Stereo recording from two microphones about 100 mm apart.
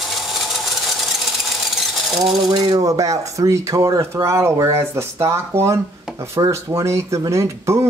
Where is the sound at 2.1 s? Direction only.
5° right (ahead or behind).